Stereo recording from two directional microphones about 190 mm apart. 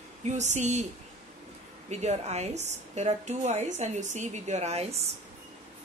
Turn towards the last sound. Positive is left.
turn(degrees=-35)  # may be behind; listen again after turning